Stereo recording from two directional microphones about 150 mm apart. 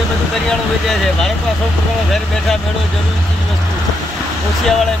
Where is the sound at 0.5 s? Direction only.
Centre (ahead or behind).